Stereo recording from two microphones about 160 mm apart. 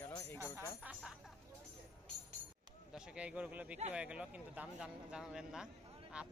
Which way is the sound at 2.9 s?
5° right (ahead or behind).